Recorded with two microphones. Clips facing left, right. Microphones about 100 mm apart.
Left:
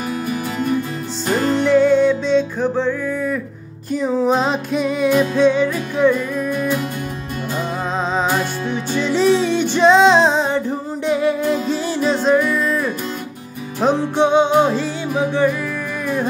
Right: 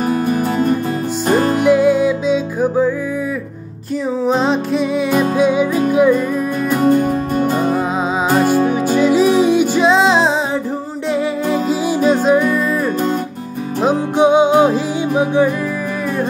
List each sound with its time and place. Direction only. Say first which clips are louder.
0.0 s music: right 7 dB; 45° right (ahead or behind)
1.6 s music: left 2 dB; 10° right (ahead or behind)
4.2 s music: right 4 dB; centre (ahead or behind)
6.7 s music: right 9 dB; 45° right (ahead or behind)
9.0 s music: right 3 dB; 10° right (ahead or behind)
13.7 s music: right 2 dB; 10° right (ahead or behind)